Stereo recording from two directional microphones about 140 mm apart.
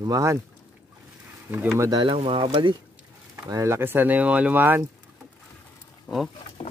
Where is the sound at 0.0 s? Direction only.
25° right (ahead or behind).